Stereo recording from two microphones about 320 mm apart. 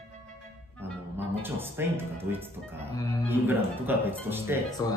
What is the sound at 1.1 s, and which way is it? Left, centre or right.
Speech, centre.